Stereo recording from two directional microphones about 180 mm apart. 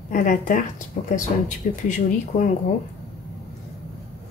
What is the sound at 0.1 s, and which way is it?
A woman's voice, 45° left (ahead or behind).